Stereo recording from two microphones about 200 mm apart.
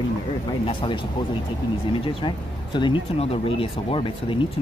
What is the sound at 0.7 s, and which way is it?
Speech, 25° left (ahead or behind).